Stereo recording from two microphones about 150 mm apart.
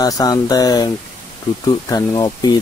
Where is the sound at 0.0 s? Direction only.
25° left (ahead or behind).